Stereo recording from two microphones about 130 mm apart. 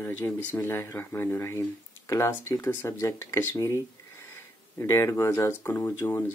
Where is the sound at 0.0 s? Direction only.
15° left (ahead or behind).